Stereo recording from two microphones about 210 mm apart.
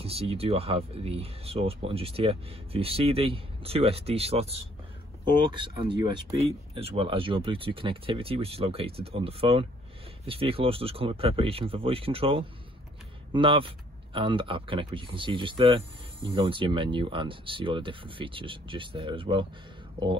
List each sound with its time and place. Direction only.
0.0 s speech: 30° right (ahead or behind)